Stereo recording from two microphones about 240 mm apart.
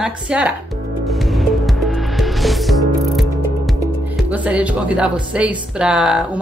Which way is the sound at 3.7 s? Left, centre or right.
Centre.